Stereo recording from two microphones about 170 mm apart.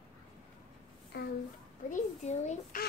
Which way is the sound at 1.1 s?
70° left (ahead or behind).